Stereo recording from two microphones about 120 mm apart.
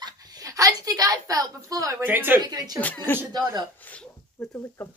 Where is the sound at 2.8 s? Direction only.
15° left (ahead or behind).